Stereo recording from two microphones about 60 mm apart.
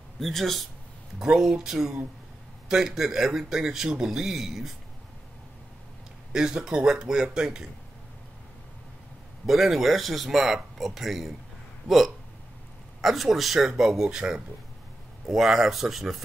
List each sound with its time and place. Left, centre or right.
0.2 s speech: centre
1.2 s a man's voice: centre
6.3 s a man's voice: centre
9.5 s speech: centre
13.0 s a man's voice: centre